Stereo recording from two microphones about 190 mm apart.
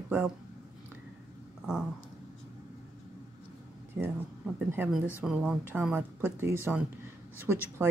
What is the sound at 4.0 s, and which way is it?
Speech, 10° right (ahead or behind).